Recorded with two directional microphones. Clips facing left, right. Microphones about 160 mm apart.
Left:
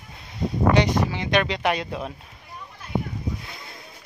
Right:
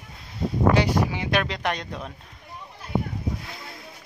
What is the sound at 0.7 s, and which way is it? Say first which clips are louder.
Speech: left 1 dB; 10° right (ahead or behind).